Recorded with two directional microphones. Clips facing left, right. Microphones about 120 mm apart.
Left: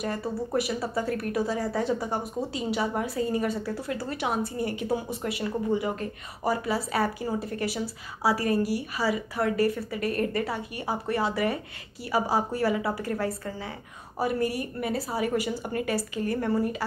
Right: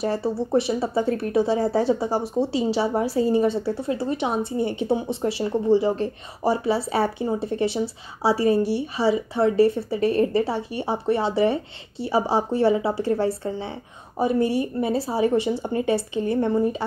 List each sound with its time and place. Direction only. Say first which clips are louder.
0.0 s speech: right 6 dB; 30° right (ahead or behind)